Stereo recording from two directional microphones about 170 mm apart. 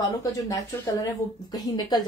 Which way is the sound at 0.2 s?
20° left (ahead or behind).